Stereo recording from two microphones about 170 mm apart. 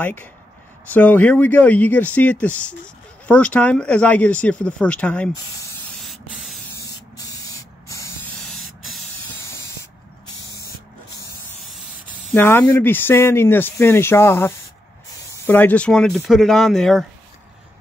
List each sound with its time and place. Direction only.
0.0 s speech: 10° left (ahead or behind)
5.9 s spray: centre (ahead or behind)
6.8 s spray: 20° left (ahead or behind)
8.5 s spray: centre (ahead or behind)
11.6 s spray: centre (ahead or behind)
12.4 s speech: 10° left (ahead or behind)